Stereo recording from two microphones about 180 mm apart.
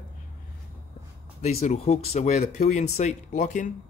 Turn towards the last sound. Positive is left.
turn(degrees=45)  # may be behind; listen again after turning